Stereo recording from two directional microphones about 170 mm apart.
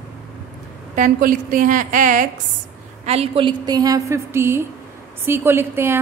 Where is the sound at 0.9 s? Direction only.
50° right (ahead or behind).